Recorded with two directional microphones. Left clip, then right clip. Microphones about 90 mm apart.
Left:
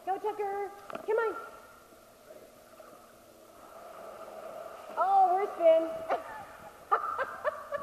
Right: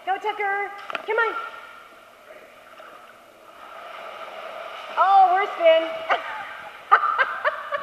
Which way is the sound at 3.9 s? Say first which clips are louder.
Right 9 dB; 35° right (ahead or behind).